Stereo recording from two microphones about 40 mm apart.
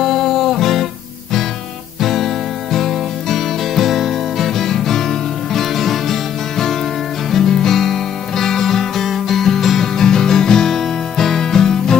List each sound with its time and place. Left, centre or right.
0.0 s music: centre
2.0 s music: centre